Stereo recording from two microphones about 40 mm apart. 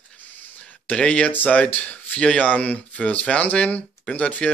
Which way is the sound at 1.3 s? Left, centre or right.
Left.